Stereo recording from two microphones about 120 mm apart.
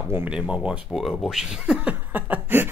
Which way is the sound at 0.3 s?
10° right (ahead or behind).